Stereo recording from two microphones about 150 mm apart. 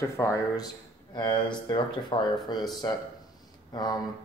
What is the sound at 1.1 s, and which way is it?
Speech, 30° left (ahead or behind).